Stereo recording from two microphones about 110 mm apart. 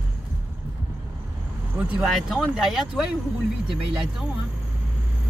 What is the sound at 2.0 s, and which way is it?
Speech, centre (ahead or behind).